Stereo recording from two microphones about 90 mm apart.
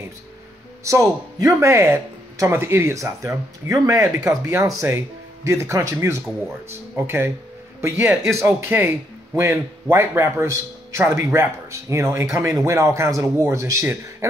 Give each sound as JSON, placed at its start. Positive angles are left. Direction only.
{"t": 0.8, "sound": "speech", "side_deg": -35}